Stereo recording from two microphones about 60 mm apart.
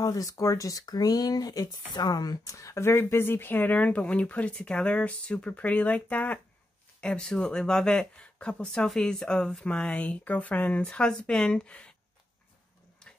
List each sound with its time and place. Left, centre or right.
0.0 s speech: left; by 11.9 s centre